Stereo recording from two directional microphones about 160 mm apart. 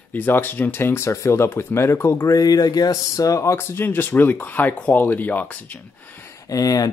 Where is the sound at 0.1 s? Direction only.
10° left (ahead or behind).